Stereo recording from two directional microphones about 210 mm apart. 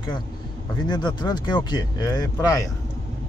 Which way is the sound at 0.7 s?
20° left (ahead or behind).